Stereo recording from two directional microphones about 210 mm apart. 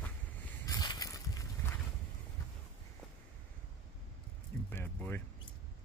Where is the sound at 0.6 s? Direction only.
20° left (ahead or behind).